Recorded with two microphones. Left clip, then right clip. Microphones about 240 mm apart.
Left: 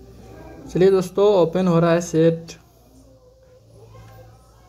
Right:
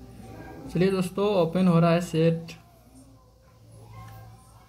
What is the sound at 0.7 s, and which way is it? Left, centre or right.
Speech, centre.